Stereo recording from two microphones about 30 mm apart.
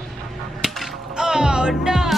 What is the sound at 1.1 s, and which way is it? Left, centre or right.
Music, right.